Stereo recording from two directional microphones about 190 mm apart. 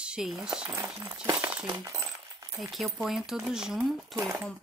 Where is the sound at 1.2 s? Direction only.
10° right (ahead or behind).